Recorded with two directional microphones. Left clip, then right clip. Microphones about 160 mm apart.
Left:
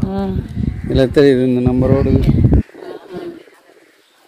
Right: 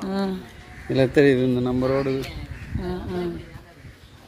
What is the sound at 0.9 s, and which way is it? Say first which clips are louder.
Speech: left 6 dB; 35° left (ahead or behind).